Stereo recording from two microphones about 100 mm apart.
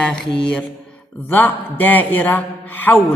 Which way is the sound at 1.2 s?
20° left (ahead or behind).